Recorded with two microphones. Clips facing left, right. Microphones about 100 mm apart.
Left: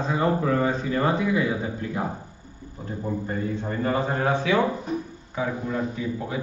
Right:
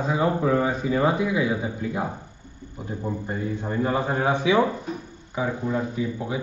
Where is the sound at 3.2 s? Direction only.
15° right (ahead or behind).